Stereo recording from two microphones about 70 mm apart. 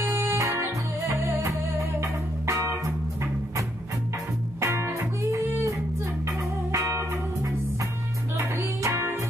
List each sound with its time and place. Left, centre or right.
0.0 s music: right
1.0 s music: right
8.8 s music: right